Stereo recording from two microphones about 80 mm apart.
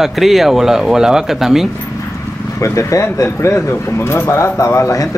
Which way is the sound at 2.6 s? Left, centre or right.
Left.